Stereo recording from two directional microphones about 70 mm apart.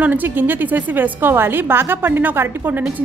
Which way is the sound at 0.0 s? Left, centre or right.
Right.